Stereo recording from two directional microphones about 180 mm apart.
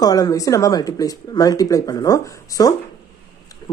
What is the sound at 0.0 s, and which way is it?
Speech, 20° left (ahead or behind).